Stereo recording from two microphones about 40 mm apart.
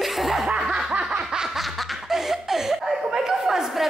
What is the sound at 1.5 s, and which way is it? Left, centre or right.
Laughter, centre.